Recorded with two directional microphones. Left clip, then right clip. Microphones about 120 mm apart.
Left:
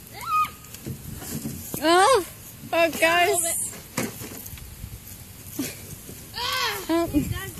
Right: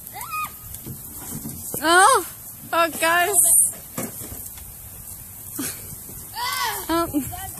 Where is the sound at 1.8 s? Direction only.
20° right (ahead or behind).